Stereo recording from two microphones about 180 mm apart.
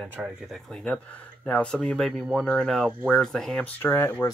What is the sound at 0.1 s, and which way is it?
Speech, 5° right (ahead or behind).